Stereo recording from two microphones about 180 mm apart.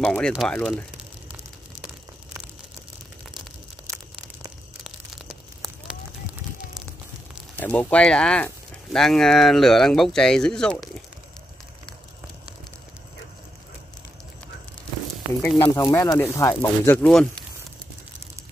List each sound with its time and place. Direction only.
0.0 s speech: 5° left (ahead or behind)
5.6 s fire: 5° right (ahead or behind)
7.5 s speech: 10° left (ahead or behind)
15.4 s speech: 15° left (ahead or behind)